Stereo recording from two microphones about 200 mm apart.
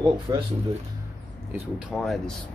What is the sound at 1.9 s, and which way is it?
Speech, centre (ahead or behind).